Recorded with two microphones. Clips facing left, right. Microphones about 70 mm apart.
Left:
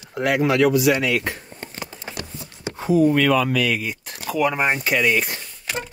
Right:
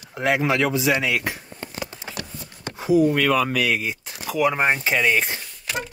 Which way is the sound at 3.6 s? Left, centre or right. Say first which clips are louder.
Even; centre.